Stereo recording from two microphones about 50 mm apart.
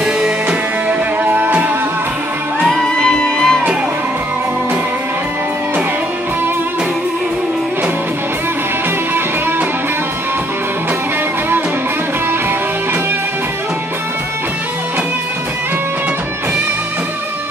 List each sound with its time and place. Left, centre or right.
1.2 s music: right
2.7 s music: centre